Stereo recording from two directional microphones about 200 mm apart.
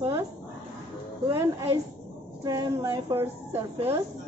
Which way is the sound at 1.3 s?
15° right (ahead or behind).